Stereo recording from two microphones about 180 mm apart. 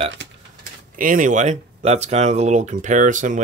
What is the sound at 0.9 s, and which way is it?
Speech, 45° right (ahead or behind).